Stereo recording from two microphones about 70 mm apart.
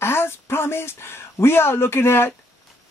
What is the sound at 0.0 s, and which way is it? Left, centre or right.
Speech, left.